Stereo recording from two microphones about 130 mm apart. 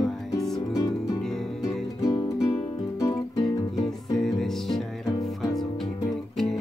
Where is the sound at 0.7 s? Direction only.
25° left (ahead or behind).